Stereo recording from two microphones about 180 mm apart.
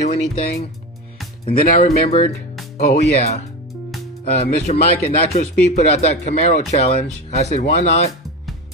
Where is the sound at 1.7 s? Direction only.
35° left (ahead or behind).